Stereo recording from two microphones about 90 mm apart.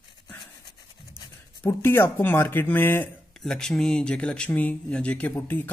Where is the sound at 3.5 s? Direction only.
5° left (ahead or behind).